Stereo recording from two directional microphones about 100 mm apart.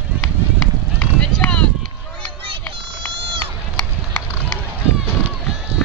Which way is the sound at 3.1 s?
60° right (ahead or behind).